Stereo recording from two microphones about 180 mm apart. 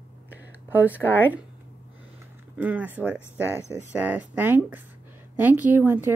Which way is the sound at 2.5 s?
10° right (ahead or behind).